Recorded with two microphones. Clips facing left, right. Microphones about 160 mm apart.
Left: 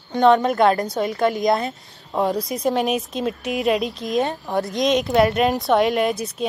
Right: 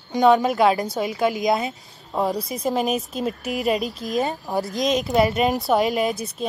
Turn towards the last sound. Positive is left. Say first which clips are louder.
# left 2 dB
turn(degrees=0)  # may be behind; listen again after turning